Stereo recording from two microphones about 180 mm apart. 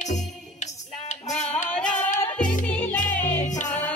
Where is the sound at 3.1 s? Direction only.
10° left (ahead or behind).